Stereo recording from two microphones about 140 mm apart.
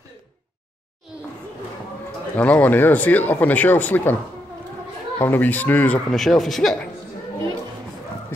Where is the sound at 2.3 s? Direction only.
10° left (ahead or behind).